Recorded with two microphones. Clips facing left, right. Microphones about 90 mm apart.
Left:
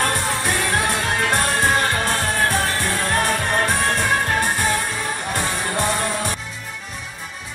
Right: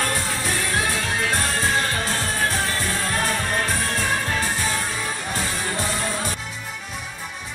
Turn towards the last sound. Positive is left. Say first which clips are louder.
# left 3 dB
turn(degrees=55)  # may be behind; listen again after turning